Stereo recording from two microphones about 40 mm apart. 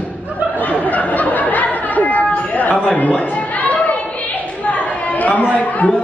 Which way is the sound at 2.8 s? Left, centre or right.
Left.